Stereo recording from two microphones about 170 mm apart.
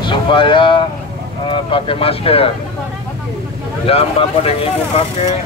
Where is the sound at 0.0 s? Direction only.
30° left (ahead or behind).